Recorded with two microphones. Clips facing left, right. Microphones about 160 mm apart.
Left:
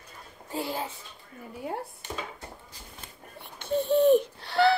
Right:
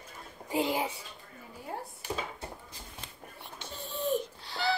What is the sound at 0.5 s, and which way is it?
Speech, 15° right (ahead or behind).